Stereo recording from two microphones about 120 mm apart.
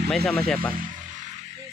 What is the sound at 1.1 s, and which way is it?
Music, 90° right.